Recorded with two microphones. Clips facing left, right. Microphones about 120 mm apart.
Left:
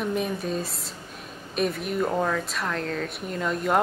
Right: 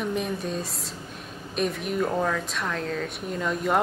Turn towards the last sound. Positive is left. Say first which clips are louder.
# left 1 dB
turn(degrees=0)  # may be behind; listen again after turning